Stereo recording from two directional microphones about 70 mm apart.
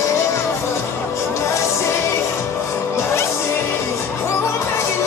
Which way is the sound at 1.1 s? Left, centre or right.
Left.